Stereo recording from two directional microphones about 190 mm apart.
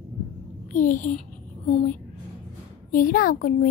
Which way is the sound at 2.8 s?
45° left (ahead or behind).